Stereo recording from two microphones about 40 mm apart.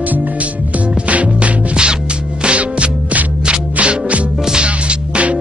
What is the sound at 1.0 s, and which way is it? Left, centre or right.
Music, right.